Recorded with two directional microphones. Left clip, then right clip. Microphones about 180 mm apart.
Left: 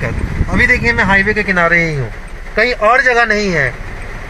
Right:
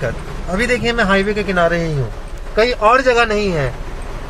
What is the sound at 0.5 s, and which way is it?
Speech, centre (ahead or behind).